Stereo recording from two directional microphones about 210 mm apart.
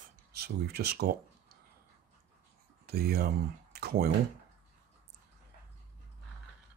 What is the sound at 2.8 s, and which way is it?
Speech, 45° right (ahead or behind).